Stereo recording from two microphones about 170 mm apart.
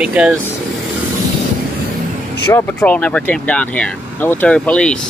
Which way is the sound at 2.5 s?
10° left (ahead or behind).